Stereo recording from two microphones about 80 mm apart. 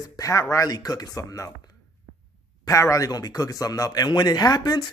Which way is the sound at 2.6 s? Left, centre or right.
Left.